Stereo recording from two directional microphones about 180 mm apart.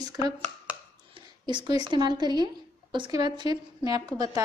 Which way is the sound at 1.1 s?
25° right (ahead or behind).